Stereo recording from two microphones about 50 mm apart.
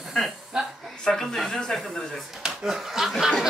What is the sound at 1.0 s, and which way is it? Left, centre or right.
Speech, centre.